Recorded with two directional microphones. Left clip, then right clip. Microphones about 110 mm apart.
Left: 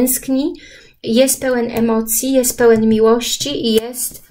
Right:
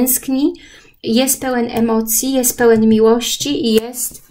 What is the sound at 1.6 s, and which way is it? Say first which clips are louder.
A woman's voice: even; 45° right (ahead or behind).